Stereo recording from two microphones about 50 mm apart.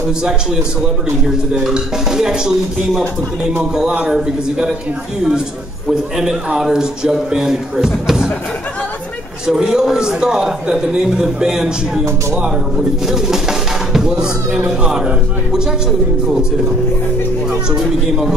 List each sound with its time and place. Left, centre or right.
0.2 s speech: centre
5.9 s speech: centre
9.5 s speech: centre
17.5 s speech: centre